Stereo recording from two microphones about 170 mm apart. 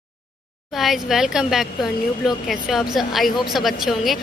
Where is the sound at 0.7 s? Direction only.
Centre (ahead or behind).